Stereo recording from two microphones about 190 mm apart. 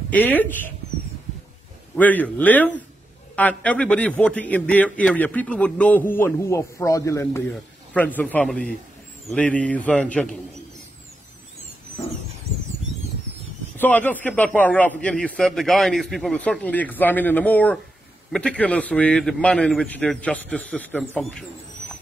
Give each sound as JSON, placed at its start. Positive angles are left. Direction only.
{"t": 0.1, "sound": "a man's voice", "side_deg": 10}
{"t": 2.0, "sound": "a man's voice", "side_deg": 10}
{"t": 13.7, "sound": "a man's voice", "side_deg": 10}